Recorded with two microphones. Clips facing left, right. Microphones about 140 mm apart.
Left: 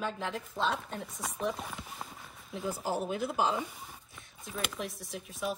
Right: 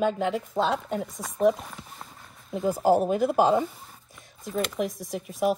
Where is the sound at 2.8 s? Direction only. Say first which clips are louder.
Right 13 dB; 45° right (ahead or behind).